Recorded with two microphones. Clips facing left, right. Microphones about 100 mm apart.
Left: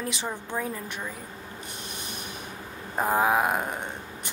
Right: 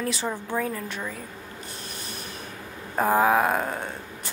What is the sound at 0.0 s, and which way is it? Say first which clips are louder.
Speech: right 4 dB; 20° left (ahead or behind).